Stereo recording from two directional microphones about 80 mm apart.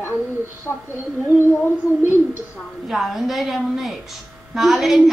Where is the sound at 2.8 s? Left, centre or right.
Centre.